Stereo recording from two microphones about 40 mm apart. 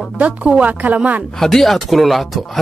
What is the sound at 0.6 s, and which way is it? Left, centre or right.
Speech, right.